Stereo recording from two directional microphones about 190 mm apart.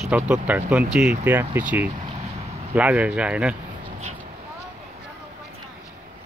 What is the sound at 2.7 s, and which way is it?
Speech, 10° right (ahead or behind).